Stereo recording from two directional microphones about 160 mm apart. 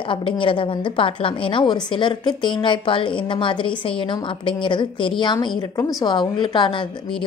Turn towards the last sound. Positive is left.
turn(degrees=30)  # may be behind; listen again after turning